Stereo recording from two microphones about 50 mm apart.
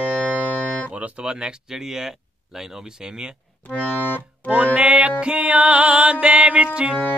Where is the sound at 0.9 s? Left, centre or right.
Right.